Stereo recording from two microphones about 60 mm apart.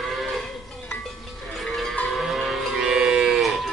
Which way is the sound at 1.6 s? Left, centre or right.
Centre.